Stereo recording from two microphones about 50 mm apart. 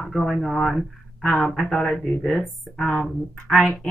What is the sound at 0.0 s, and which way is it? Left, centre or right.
Speech, centre.